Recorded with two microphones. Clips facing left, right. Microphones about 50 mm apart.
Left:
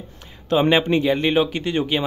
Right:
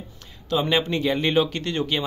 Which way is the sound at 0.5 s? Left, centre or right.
Left.